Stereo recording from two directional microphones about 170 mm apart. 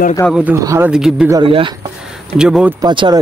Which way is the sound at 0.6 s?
20° right (ahead or behind).